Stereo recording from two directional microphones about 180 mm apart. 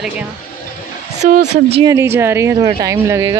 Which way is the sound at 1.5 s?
35° right (ahead or behind).